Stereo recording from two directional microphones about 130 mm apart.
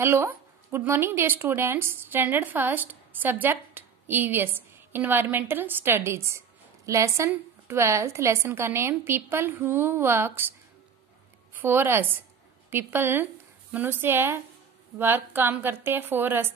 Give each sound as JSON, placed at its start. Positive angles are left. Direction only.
{"t": 0.0, "sound": "a woman's voice", "side_deg": -20}
{"t": 11.5, "sound": "speech", "side_deg": -15}